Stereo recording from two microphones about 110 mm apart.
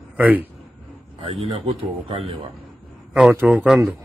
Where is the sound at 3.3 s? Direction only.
15° right (ahead or behind).